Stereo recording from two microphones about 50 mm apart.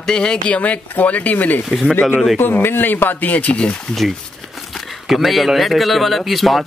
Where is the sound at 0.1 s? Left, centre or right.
Centre.